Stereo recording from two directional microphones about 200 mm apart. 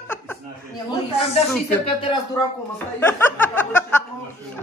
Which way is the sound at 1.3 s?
30° left (ahead or behind).